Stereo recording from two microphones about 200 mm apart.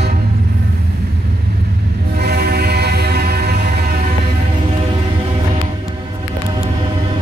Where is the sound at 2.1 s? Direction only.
55° right (ahead or behind).